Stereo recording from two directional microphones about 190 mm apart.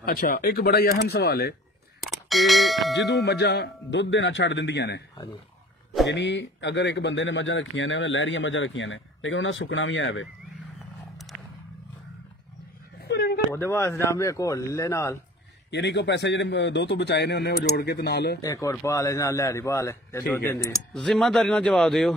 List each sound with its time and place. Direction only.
0.0 s a man's voice: 55° left (ahead or behind)
2.0 s clang: centre (ahead or behind)
3.3 s speech: 65° left (ahead or behind)
6.0 s a man's voice: 70° left (ahead or behind)
13.0 s a sound: 60° left (ahead or behind)
13.6 s a man's voice: 15° left (ahead or behind)
15.7 s a man's voice: 65° left (ahead or behind)
18.4 s a man's voice: 15° left (ahead or behind)